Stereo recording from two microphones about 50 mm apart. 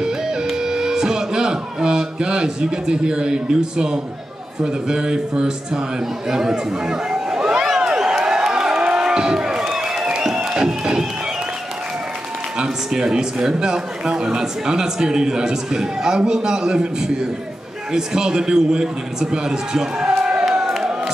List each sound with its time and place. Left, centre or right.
0.0 s music: centre
4.6 s speech: centre
7.6 s a sound: centre
12.5 s a man's voice: centre
20.7 s crowd: centre